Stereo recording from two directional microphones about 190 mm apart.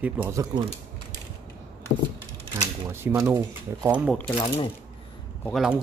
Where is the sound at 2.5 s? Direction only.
15° right (ahead or behind).